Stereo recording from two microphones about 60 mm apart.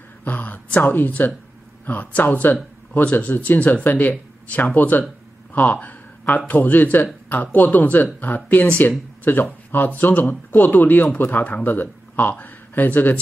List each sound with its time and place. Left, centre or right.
0.2 s speech: left